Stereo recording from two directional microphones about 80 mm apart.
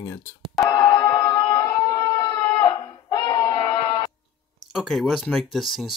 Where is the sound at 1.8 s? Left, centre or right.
Left.